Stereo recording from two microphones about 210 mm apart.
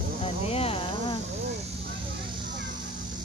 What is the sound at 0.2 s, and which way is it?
Insect, 30° left (ahead or behind).